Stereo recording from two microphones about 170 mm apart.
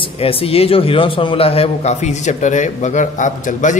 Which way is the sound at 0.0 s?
35° left (ahead or behind).